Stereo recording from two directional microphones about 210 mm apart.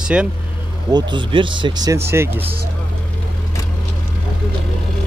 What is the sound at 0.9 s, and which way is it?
Speech, 20° right (ahead or behind).